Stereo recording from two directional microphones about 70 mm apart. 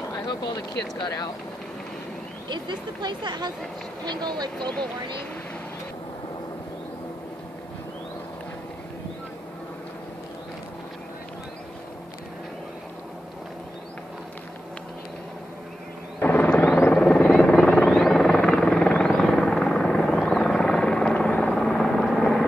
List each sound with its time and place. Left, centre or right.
0.3 s speech: left
2.5 s speech: right
4.6 s speech: centre
16.2 s a sound: left
16.9 s vehicle: centre
17.4 s helicopter: centre
21.5 s vehicle: centre